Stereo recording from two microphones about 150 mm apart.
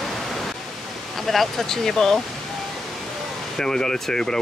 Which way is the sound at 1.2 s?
Centre (ahead or behind).